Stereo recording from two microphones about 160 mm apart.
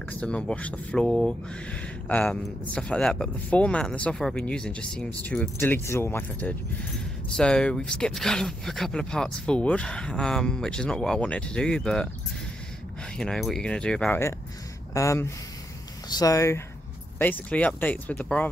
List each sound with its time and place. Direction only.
0.1 s speech: 5° left (ahead or behind)
13.2 s speech: centre (ahead or behind)